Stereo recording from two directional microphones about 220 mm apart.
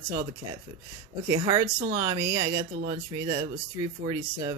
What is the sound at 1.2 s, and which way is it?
Speech, 20° right (ahead or behind).